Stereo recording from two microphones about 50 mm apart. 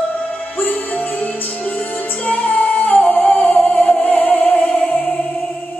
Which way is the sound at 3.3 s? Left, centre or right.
Centre.